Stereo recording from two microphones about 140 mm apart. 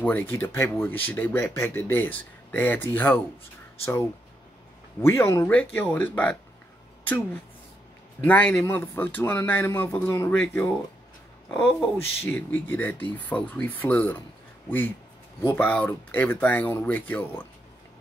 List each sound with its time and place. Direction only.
0.0 s speech: 10° left (ahead or behind)
5.0 s speech: 20° left (ahead or behind)
8.2 s speech: 10° left (ahead or behind)
15.4 s speech: 15° left (ahead or behind)